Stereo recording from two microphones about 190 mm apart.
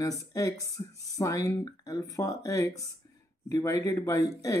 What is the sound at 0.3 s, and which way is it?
Speech, 15° left (ahead or behind).